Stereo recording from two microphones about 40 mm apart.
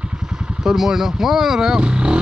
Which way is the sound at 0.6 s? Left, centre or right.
Centre.